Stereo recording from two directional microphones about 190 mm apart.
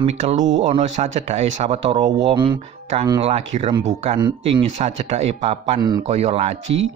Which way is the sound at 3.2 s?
35° right (ahead or behind).